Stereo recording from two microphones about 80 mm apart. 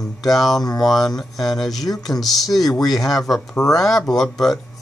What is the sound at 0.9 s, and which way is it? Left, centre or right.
Speech, centre.